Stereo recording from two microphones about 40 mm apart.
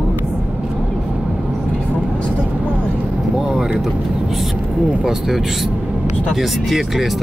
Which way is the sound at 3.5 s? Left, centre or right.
Centre.